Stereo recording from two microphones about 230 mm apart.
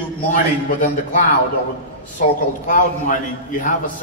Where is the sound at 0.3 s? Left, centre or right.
Left.